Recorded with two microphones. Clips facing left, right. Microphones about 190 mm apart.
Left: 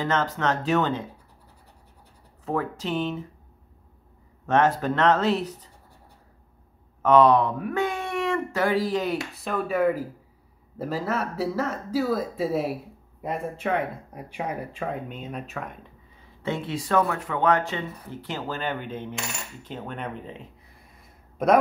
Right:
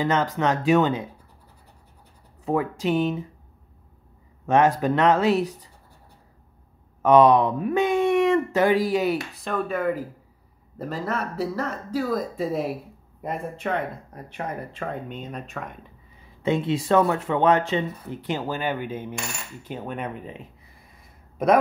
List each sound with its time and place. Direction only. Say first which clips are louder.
0.0 s speech: right 3 dB; 15° right (ahead or behind)
2.4 s speech: right 4 dB; 15° right (ahead or behind)
4.5 s speech: right 2 dB; 15° right (ahead or behind)
7.0 s speech: right 2 dB; 15° right (ahead or behind); by 15.8 s centre (ahead or behind)
16.4 s speech: right 6 dB; 20° right (ahead or behind)